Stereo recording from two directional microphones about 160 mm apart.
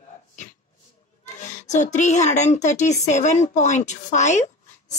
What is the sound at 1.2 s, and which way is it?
A child's voice, 45° left (ahead or behind).